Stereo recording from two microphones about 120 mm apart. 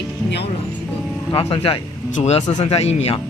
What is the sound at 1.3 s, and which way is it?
Music, 50° left (ahead or behind).